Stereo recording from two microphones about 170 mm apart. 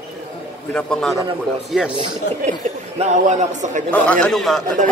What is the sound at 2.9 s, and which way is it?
Speech, 40° right (ahead or behind).